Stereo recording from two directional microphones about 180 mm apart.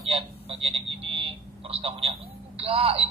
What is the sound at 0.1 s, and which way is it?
Speech, 30° right (ahead or behind).